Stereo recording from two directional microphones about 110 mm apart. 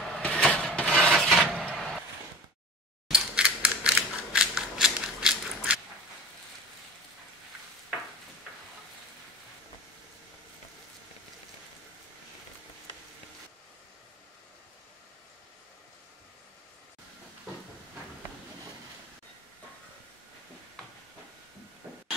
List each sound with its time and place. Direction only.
0.0 s a sound: 10° left (ahead or behind)
1.7 s vehicle: 5° left (ahead or behind)
3.1 s scissors: 10° right (ahead or behind)
21.8 s heart murmur: 15° right (ahead or behind)